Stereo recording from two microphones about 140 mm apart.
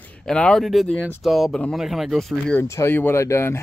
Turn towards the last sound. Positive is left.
turn(degrees=20)  # may be behind; listen again after turning